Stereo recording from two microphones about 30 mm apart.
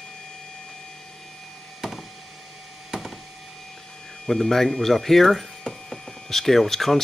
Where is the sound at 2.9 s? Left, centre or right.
Right.